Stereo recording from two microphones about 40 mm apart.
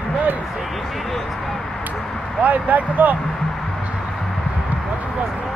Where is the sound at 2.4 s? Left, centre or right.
Right.